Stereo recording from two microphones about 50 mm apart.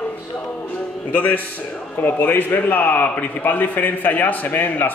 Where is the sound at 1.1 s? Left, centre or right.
Left.